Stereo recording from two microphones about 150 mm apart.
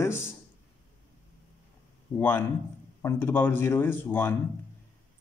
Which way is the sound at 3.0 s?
15° left (ahead or behind).